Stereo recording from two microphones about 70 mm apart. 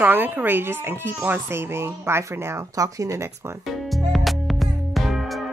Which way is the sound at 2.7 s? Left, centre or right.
Right.